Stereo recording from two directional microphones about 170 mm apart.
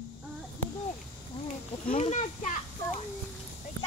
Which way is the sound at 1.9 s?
45° left (ahead or behind).